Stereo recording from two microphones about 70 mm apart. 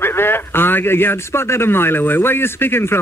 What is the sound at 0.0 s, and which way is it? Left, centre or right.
A man's voice, left.